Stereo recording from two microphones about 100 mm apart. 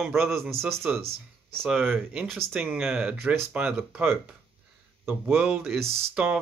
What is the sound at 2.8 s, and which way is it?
Speech, 5° right (ahead or behind).